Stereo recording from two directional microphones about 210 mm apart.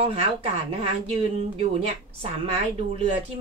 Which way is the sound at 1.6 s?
25° right (ahead or behind).